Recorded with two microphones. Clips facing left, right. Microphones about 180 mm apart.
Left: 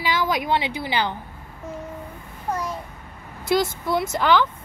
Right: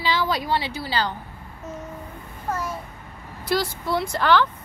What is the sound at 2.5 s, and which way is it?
Speech, 15° left (ahead or behind).